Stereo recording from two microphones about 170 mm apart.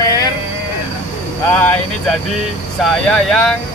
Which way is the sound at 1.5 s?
10° left (ahead or behind).